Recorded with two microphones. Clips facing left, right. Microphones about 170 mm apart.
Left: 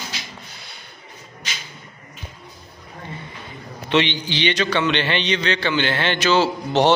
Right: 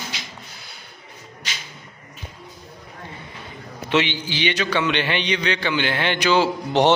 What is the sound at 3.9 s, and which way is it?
A man's voice, 5° right (ahead or behind).